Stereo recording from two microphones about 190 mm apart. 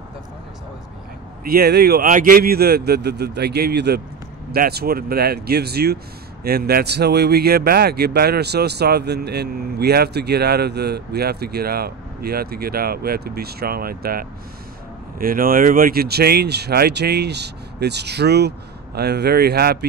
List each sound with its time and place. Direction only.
1.4 s speech: 55° right (ahead or behind)